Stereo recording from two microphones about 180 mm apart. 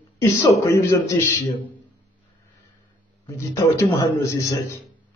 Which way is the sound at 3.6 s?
15° left (ahead or behind).